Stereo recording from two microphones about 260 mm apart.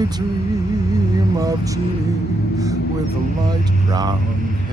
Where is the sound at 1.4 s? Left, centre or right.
Centre.